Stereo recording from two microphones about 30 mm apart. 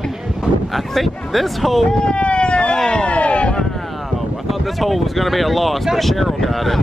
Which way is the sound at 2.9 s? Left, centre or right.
Left.